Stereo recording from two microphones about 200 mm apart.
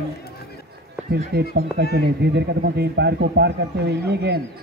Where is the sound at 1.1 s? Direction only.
55° right (ahead or behind).